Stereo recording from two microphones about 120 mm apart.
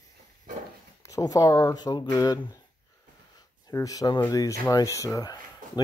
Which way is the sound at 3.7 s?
30° left (ahead or behind).